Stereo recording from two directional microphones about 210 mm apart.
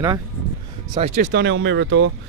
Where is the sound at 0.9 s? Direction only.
35° right (ahead or behind).